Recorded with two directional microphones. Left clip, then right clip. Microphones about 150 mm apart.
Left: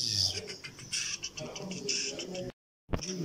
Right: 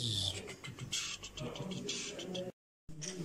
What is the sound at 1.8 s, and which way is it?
Music, 35° right (ahead or behind).